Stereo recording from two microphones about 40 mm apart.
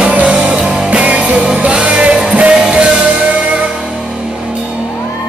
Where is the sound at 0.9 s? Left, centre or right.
Right.